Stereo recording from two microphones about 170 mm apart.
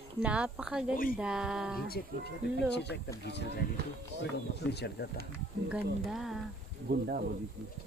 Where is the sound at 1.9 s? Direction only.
65° left (ahead or behind).